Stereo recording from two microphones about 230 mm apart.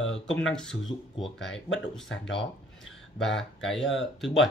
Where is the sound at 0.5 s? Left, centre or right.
Centre.